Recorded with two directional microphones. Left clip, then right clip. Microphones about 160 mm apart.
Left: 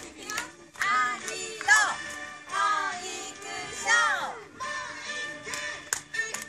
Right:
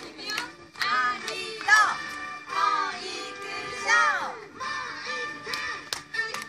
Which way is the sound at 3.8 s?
10° left (ahead or behind).